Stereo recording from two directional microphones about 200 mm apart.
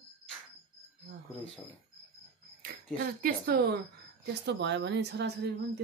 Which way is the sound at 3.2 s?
50° right (ahead or behind).